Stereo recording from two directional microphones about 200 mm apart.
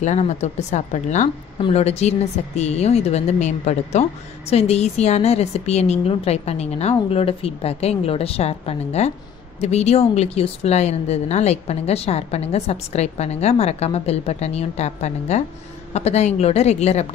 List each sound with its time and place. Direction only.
0.0 s speech: 35° left (ahead or behind)